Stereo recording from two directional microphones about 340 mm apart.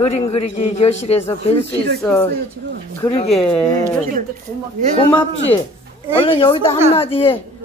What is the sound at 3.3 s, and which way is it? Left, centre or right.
Speech, centre.